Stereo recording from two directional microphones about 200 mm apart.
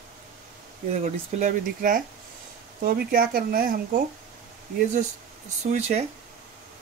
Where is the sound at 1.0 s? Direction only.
40° right (ahead or behind).